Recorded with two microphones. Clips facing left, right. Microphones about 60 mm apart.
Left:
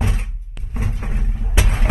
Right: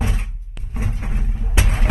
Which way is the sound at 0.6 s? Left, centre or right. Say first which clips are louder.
Left 1 dB; left.